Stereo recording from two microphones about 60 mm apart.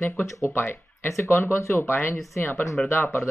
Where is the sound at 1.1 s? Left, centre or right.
Left.